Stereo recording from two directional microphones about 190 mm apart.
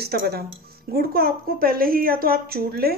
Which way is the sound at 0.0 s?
55° right (ahead or behind).